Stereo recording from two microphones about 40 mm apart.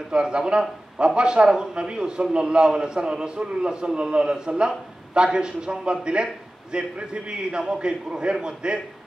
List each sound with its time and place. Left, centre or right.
0.1 s a man's voice: right